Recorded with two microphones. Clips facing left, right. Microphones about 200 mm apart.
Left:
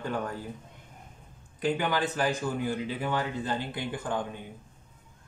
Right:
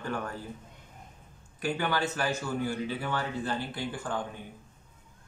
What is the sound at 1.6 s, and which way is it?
Speech, 15° left (ahead or behind).